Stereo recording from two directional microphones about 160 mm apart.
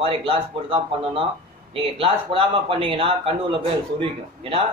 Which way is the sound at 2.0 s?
35° right (ahead or behind).